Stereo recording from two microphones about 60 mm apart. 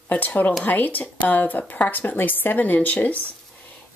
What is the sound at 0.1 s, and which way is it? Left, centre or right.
Speech, left.